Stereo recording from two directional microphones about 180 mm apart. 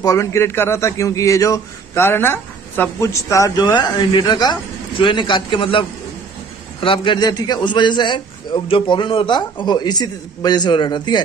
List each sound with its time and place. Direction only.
0.0 s a man's voice: 15° left (ahead or behind)